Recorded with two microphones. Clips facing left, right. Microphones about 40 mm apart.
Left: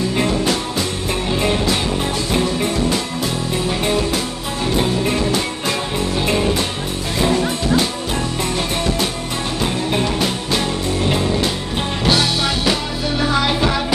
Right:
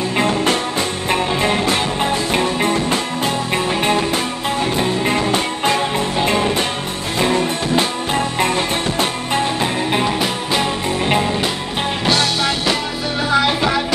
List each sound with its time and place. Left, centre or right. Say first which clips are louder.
0.1 s music: right 2 dB; right
5.0 s music: right 1 dB; right
9.6 s music: right 1 dB; right
12.1 s music: even; centre